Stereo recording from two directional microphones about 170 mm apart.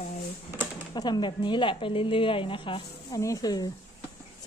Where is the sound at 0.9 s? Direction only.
25° left (ahead or behind).